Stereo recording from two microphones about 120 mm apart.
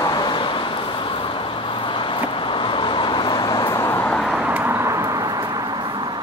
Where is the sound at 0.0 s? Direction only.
40° left (ahead or behind); by 4.1 s 20° left (ahead or behind).